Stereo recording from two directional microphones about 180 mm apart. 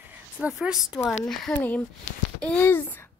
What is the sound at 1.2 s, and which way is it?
A woman's voice, 5° left (ahead or behind).